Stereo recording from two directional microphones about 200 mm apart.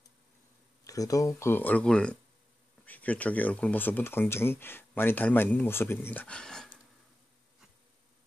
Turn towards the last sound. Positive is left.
turn(degrees=5)  # may be behind; listen again after turning